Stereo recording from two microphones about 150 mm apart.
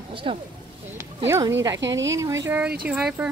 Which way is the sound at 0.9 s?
20° right (ahead or behind).